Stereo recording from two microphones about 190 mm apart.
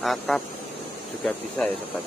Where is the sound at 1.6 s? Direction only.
5° left (ahead or behind).